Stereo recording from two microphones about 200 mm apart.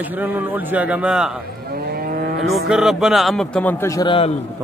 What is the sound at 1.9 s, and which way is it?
Vehicle, 50° right (ahead or behind).